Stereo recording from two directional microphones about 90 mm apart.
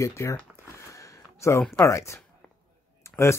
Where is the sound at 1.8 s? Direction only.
35° left (ahead or behind).